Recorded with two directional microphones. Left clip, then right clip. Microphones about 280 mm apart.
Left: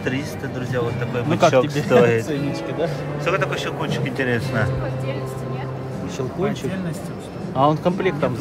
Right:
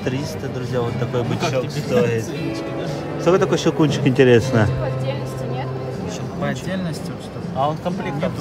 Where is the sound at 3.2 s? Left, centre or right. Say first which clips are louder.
Right 5 dB; centre.